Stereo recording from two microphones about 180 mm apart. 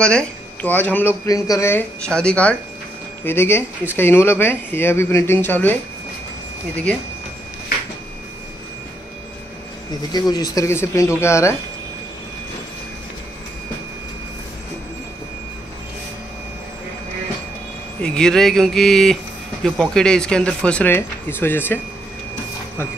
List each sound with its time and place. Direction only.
0.0 s speech: 5° left (ahead or behind)
10.1 s speech: 20° left (ahead or behind)
18.0 s speech: 5° left (ahead or behind)